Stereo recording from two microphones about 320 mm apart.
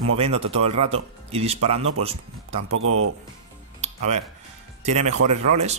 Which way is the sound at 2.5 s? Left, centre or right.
Right.